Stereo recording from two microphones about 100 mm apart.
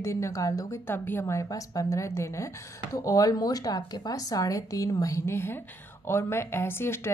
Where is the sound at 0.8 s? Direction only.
20° left (ahead or behind).